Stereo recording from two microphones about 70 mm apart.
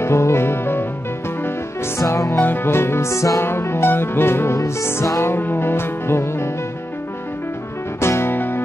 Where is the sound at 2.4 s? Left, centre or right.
Left.